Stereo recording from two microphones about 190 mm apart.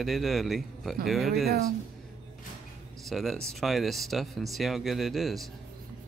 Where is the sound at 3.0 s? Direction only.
Centre (ahead or behind).